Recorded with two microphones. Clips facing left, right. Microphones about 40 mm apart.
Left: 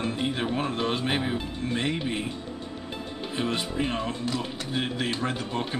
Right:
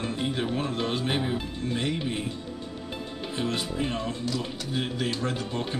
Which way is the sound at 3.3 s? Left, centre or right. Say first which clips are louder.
Left 1 dB; centre.